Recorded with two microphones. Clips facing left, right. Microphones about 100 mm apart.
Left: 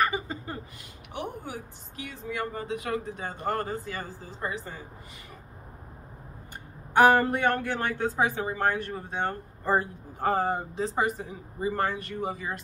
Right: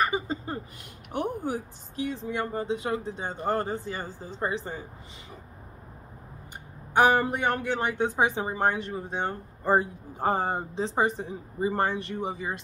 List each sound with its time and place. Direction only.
0.0 s a sound: 25° right (ahead or behind)
1.1 s speech: 40° right (ahead or behind)
6.9 s a woman's voice: 15° right (ahead or behind)